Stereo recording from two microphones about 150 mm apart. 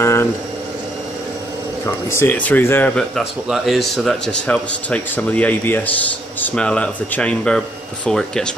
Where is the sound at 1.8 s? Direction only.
15° left (ahead or behind).